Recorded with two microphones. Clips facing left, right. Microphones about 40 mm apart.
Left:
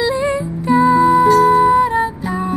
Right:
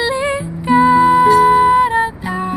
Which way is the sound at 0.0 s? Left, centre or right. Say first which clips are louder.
Even; right.